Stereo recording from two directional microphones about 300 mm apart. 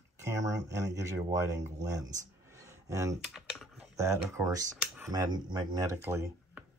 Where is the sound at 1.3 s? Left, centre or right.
Centre.